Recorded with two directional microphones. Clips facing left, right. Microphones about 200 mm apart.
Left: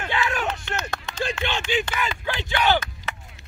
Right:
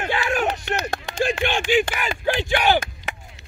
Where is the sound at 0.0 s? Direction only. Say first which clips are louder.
Right 3 dB; 45° right (ahead or behind).